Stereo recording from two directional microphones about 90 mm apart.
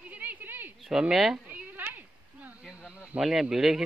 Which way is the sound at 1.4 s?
20° right (ahead or behind).